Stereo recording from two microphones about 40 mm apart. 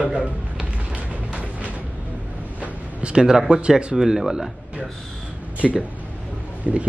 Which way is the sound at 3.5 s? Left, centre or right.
Right.